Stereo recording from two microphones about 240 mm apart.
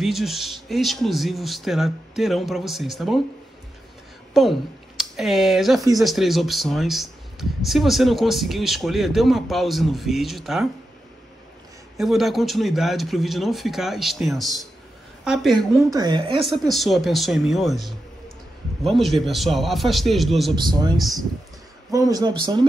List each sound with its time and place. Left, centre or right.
0.0 s speech: centre
4.3 s speech: centre
12.0 s speech: centre
15.9 s a man's voice: centre
16.4 s speech: centre
21.9 s a man's voice: centre